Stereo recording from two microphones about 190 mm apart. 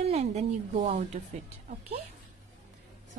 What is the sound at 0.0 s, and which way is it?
Speech, 35° right (ahead or behind).